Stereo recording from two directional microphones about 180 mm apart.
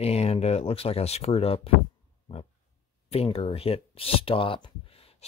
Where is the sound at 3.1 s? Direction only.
35° left (ahead or behind).